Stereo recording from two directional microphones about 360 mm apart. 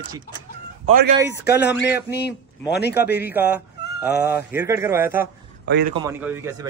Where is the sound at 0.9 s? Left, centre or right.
Right.